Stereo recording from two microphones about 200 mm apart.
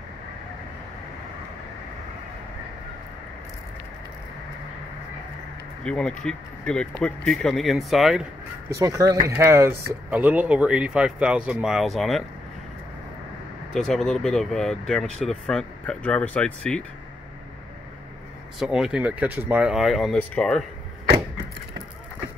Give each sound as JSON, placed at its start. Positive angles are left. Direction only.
{"t": 5.9, "sound": "speech", "side_deg": 5}
{"t": 8.7, "sound": "speech", "side_deg": -15}
{"t": 13.7, "sound": "speech", "side_deg": 5}
{"t": 18.6, "sound": "speech", "side_deg": -5}